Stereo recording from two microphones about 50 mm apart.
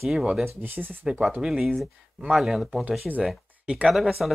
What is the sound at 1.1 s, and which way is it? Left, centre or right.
Speech, centre.